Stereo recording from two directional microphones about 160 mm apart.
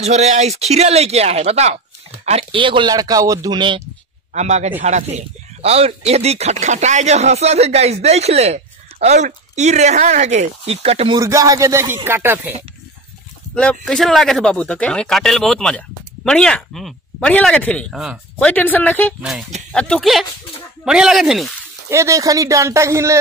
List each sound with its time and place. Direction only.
0.0 s speech: 45° right (ahead or behind)
4.3 s a man's voice: 45° right (ahead or behind)
11.1 s speech: 20° right (ahead or behind)
13.6 s speech: 5° left (ahead or behind)
18.4 s a woman's voice: 10° left (ahead or behind)
21.8 s speech: 20° right (ahead or behind)